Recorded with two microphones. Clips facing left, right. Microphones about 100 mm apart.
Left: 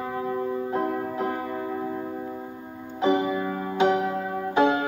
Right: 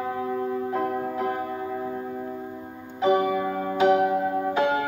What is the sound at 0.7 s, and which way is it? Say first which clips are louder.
Music: even; 30° left (ahead or behind).